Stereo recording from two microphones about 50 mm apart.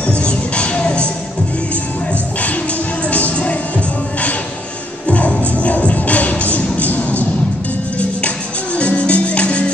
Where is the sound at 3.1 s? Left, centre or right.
Left.